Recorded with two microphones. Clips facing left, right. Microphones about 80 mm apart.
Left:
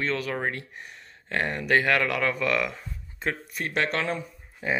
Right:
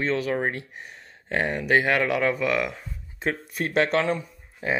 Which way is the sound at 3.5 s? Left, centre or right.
Right.